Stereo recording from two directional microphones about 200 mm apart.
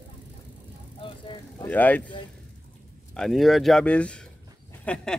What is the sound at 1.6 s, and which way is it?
Speech, 5° left (ahead or behind).